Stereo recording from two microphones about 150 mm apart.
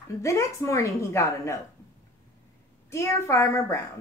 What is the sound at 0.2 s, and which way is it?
Speech, 20° left (ahead or behind).